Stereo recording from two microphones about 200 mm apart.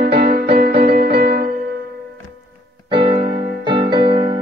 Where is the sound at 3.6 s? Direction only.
25° right (ahead or behind).